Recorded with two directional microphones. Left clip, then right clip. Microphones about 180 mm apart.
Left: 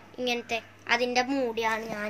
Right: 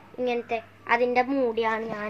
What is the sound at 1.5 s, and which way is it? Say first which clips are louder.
Speech: right 2 dB; 35° right (ahead or behind).